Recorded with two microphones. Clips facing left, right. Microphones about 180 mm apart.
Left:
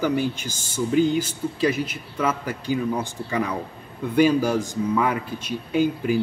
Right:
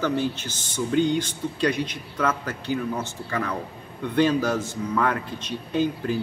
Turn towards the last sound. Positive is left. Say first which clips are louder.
# left 3 dB
turn(degrees=10)  # may be behind; listen again after turning